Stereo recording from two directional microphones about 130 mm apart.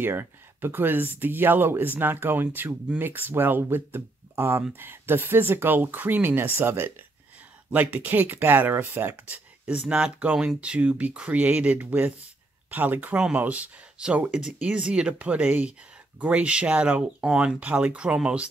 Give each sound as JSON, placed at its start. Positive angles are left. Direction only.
{"t": 0.0, "sound": "speech", "side_deg": -15}